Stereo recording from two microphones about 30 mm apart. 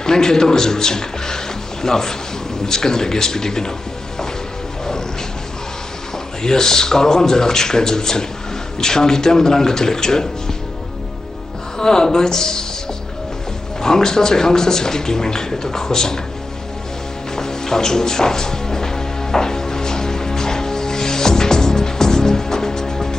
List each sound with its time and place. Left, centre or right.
0.0 s a man's voice: left
6.4 s a man's voice: centre
11.8 s a man's voice: left
13.7 s a man's voice: left
17.4 s music: centre